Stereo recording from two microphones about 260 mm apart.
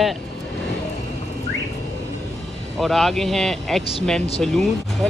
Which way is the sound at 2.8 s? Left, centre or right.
Centre.